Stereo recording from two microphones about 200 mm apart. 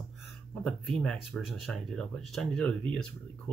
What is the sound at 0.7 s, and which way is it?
Speech, centre (ahead or behind).